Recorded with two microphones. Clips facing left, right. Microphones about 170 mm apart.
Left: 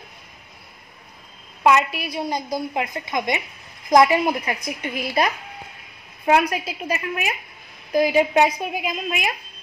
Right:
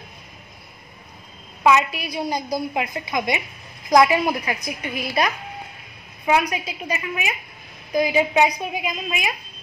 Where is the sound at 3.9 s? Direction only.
25° left (ahead or behind).